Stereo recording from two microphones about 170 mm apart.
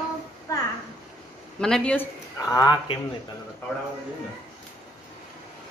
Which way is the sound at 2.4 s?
20° left (ahead or behind).